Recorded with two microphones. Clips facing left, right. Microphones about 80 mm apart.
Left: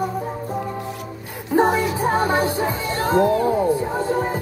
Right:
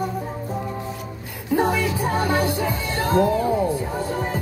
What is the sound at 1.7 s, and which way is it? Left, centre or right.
Music, left.